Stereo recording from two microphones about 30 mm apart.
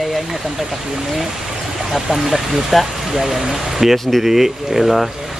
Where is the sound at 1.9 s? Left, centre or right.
Centre.